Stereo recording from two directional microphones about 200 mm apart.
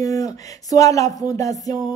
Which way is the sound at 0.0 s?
15° left (ahead or behind).